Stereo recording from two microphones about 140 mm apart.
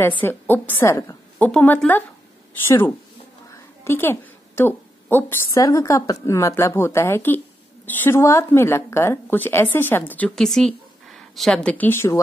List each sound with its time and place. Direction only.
0.2 s a woman's voice: 15° left (ahead or behind)
1.5 s a woman's voice: 10° left (ahead or behind)